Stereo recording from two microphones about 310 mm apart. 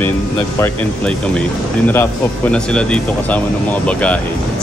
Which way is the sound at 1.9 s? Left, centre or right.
Centre.